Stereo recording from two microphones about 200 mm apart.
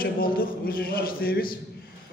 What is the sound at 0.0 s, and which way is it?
A man's voice, 45° left (ahead or behind).